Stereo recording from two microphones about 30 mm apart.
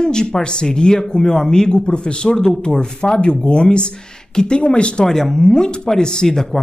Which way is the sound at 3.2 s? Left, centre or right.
Left.